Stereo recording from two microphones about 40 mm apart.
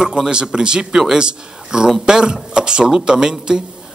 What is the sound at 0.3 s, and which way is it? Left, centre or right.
Speech, right.